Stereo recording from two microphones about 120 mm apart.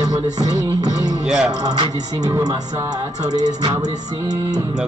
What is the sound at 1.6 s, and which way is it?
Music, 35° right (ahead or behind).